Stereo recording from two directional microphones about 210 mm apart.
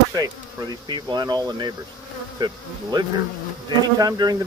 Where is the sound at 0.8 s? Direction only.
20° right (ahead or behind).